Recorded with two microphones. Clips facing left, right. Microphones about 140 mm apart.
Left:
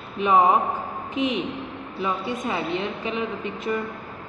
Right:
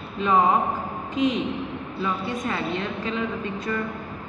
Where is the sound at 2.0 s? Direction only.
20° left (ahead or behind).